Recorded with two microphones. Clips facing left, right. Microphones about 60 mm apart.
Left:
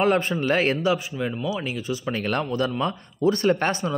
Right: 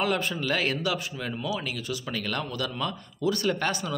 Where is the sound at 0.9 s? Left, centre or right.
Centre.